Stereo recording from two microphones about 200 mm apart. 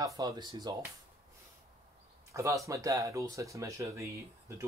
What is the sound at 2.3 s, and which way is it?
Speech, 15° right (ahead or behind).